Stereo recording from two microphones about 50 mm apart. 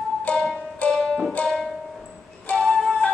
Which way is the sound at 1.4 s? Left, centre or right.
Left.